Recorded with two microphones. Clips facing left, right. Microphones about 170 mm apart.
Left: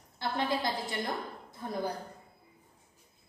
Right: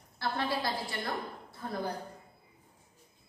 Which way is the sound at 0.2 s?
20° left (ahead or behind).